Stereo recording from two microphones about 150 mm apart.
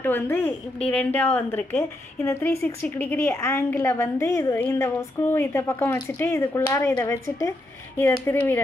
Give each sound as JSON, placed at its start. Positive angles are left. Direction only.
{"t": 0.0, "sound": "a woman's voice", "side_deg": 15}